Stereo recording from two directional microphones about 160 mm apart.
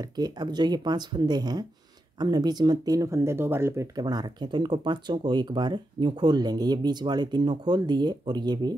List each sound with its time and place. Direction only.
0.0 s speech: 25° right (ahead or behind)